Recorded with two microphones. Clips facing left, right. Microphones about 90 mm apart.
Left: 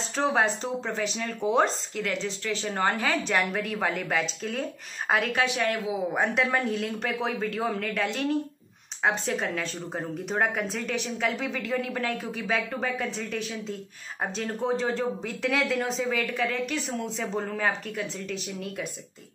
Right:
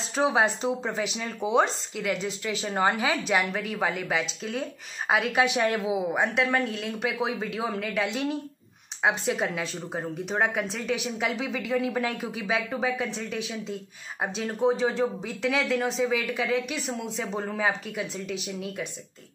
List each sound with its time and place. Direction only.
0.1 s speech: 5° right (ahead or behind)
5.4 s a woman's voice: 20° right (ahead or behind)
6.1 s speech: centre (ahead or behind)